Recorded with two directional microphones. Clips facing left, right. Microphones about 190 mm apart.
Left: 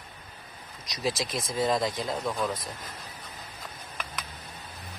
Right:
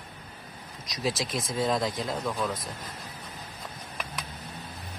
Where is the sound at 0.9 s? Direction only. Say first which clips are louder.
Even; centre (ahead or behind).